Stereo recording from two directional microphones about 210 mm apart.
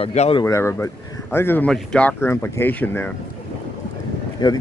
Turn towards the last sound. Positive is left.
turn(degrees=20)  # may be behind; listen again after turning